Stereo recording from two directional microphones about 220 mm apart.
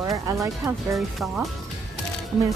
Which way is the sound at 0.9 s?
Centre (ahead or behind).